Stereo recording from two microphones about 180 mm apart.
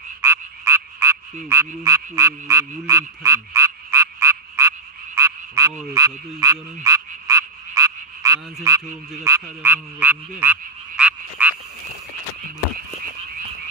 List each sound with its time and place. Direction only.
0.2 s croak: 15° right (ahead or behind)
8.6 s frog: 15° right (ahead or behind)